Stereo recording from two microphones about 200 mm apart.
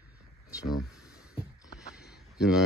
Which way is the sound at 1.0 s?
20° left (ahead or behind).